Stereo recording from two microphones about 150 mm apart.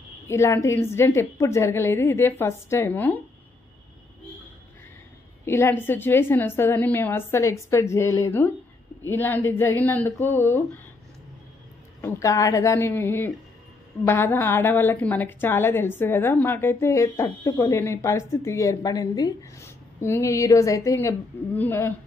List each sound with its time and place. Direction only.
0.3 s a woman's voice: 20° left (ahead or behind)
5.4 s a woman's voice: 15° left (ahead or behind)
12.0 s a woman's voice: 20° left (ahead or behind)